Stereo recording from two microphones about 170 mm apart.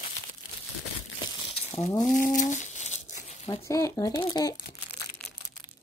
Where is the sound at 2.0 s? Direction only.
50° left (ahead or behind).